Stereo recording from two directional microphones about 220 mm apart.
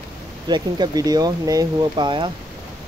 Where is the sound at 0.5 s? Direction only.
20° right (ahead or behind).